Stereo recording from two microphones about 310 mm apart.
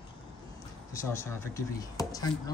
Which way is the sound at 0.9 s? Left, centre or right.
Centre.